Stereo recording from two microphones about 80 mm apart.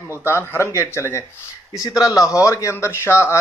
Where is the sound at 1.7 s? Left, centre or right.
Left.